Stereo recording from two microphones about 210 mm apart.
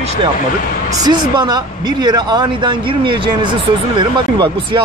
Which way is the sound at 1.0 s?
20° right (ahead or behind).